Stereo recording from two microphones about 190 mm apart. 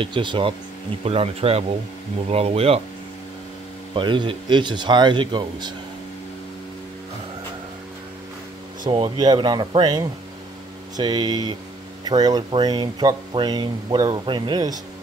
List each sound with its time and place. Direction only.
0.0 s speech: 25° right (ahead or behind)
3.9 s speech: 25° right (ahead or behind)
8.8 s speech: 25° right (ahead or behind)